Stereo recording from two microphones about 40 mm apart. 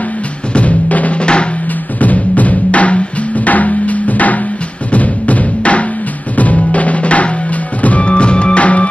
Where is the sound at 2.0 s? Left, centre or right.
Left.